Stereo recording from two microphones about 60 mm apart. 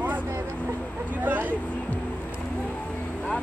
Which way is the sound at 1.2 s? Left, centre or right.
Right.